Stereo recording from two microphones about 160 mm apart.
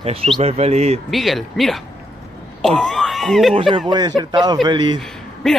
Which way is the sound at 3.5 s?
35° right (ahead or behind).